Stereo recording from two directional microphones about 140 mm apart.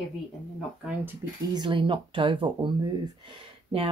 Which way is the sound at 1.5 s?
35° right (ahead or behind).